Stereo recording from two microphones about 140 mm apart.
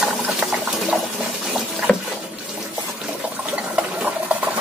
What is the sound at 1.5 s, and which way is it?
Water, 5° right (ahead or behind).